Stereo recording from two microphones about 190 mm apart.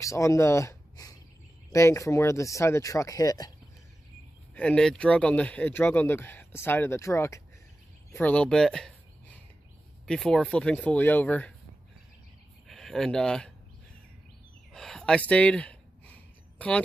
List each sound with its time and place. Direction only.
0.0 s speech: 15° left (ahead or behind)
4.6 s speech: 5° left (ahead or behind)
8.1 s a sound: 10° left (ahead or behind)
10.0 s speech: 5° left (ahead or behind)
12.6 s speech: centre (ahead or behind)
14.7 s a sound: 5° left (ahead or behind)